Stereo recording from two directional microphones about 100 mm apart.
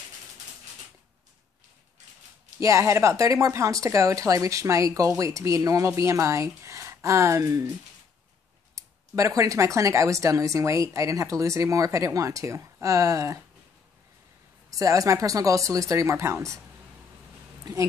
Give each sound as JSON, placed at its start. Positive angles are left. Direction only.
{"t": 2.6, "sound": "a woman's voice", "side_deg": -30}
{"t": 8.7, "sound": "a woman's voice", "side_deg": -35}
{"t": 14.7, "sound": "a woman's voice", "side_deg": -35}